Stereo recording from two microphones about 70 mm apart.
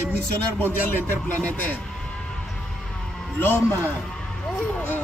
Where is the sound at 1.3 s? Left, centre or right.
Left.